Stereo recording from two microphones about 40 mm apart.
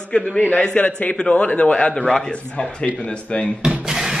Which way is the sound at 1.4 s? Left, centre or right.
Left.